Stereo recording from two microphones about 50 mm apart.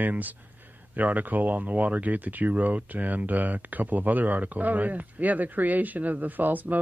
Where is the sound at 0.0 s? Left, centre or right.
Right.